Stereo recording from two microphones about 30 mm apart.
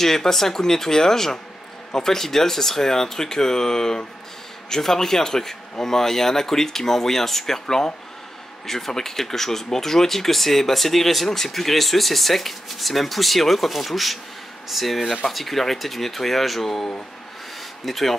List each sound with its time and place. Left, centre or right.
0.0 s speech: centre
7.6 s speech: left; by 16.8 s centre
17.8 s speech: centre